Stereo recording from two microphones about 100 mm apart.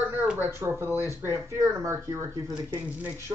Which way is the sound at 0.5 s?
25° right (ahead or behind).